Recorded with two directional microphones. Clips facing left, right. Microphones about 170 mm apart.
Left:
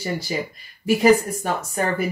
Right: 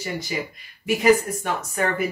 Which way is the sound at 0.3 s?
35° left (ahead or behind).